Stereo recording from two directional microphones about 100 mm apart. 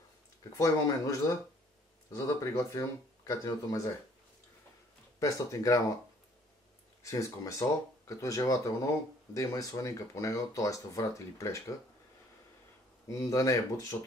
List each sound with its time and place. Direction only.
0.4 s speech: 35° left (ahead or behind)
2.1 s speech: 35° left (ahead or behind)
5.2 s speech: 35° left (ahead or behind)
7.0 s speech: 30° left (ahead or behind)
13.1 s speech: 35° left (ahead or behind)